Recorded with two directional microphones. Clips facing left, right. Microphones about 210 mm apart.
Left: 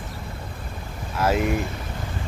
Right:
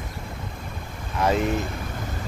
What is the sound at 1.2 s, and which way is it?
Speech, 5° left (ahead or behind).